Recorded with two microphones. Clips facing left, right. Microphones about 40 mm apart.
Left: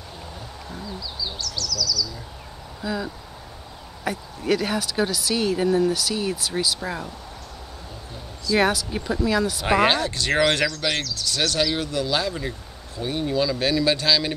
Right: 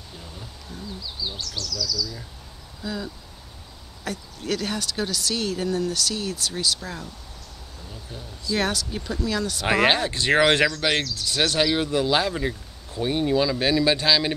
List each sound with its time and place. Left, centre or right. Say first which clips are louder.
1.4 s speech: left 2 dB; right
2.8 s speech: left 3 dB; centre
8.5 s speech: left 5 dB; centre
9.7 s speech: even; centre